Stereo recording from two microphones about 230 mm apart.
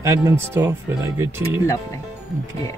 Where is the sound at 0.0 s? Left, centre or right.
Centre.